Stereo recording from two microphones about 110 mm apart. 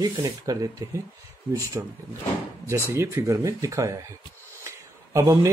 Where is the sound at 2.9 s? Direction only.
25° right (ahead or behind).